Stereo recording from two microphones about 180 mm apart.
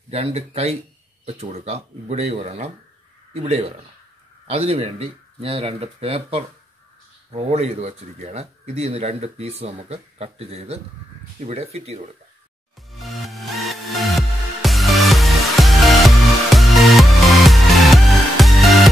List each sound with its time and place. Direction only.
0.1 s speech: 35° right (ahead or behind)
12.9 s music: centre (ahead or behind)